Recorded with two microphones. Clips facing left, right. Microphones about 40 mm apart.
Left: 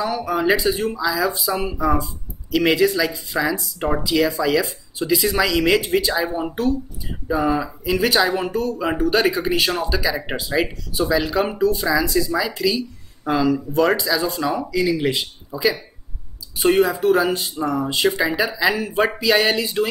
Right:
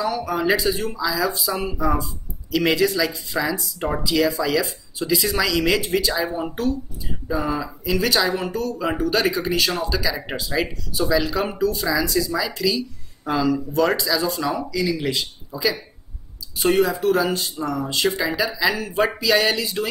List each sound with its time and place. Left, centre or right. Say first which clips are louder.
0.0 s speech: left 2 dB; centre
14.6 s speech: left 3 dB; centre